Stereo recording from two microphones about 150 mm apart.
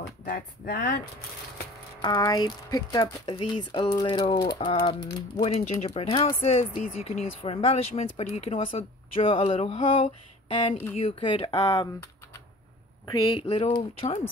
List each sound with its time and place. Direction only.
0.2 s speech: 80° left
2.0 s speech: 30° left (ahead or behind)
11.5 s speech: 20° left (ahead or behind)
13.0 s speech: 30° left (ahead or behind)